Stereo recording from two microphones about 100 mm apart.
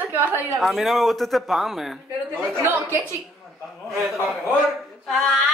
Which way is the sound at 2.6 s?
25° right (ahead or behind).